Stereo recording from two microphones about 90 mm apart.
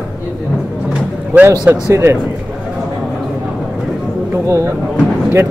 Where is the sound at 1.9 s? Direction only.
30° right (ahead or behind).